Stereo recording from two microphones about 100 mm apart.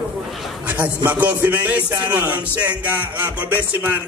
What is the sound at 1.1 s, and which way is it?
Music, 15° right (ahead or behind).